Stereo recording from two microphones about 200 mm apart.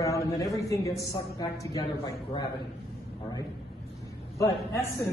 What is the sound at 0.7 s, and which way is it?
A man's voice, 15° left (ahead or behind).